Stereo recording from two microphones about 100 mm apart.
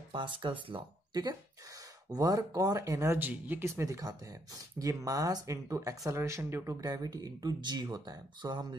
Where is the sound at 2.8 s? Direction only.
25° right (ahead or behind).